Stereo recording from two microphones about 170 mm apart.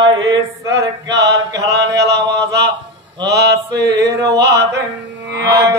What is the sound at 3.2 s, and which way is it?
Mantra, 80° right.